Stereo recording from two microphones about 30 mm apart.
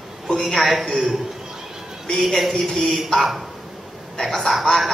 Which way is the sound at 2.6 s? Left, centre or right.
Centre.